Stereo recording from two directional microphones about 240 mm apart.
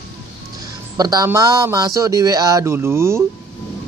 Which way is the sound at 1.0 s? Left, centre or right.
Centre.